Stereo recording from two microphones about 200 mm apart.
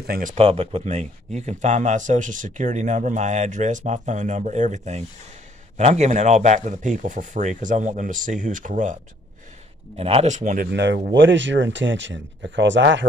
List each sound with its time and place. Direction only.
0.0 s speech: 45° right (ahead or behind)
9.9 s speech: 30° right (ahead or behind)
10.7 s speech: 60° right (ahead or behind)